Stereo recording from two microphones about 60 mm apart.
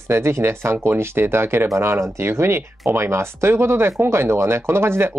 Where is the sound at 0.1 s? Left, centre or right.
Right.